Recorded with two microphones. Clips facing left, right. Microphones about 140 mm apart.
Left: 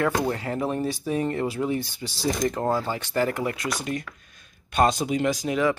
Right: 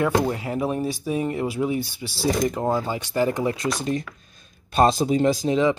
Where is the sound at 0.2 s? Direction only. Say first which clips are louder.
Right 2 dB; 15° right (ahead or behind).